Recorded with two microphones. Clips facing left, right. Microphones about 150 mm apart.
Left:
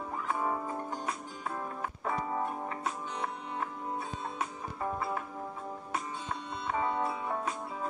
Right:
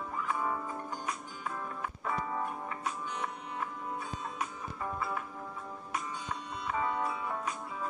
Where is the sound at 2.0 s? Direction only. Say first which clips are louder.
Left 2 dB; 20° left (ahead or behind).